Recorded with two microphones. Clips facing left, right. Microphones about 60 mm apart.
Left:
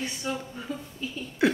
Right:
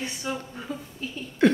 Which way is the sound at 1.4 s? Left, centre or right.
Centre.